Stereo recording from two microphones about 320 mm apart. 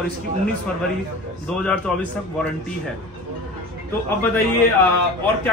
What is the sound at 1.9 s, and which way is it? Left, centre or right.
Speech, centre.